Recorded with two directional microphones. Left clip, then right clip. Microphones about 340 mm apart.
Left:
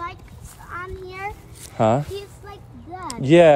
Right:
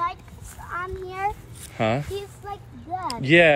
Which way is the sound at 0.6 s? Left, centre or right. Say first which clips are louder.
Right 2 dB; centre.